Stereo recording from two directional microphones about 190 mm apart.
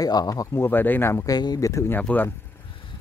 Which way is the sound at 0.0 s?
20° left (ahead or behind).